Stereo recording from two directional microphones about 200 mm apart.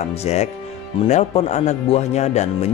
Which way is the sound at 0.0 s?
35° left (ahead or behind).